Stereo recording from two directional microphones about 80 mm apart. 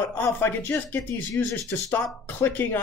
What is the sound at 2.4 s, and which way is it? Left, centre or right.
Speech, left.